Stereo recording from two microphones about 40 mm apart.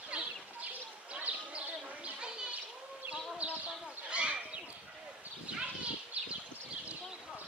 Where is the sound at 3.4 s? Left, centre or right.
Right.